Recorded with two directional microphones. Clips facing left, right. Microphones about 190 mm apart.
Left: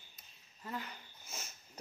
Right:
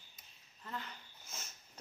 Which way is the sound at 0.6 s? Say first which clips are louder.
Left 3 dB; 10° left (ahead or behind).